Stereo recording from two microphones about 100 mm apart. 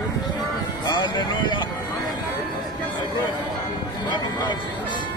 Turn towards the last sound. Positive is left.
turn(degrees=45)  # may be behind; listen again after turning